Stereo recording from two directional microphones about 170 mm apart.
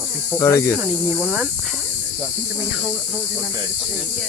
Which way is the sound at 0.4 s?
20° left (ahead or behind).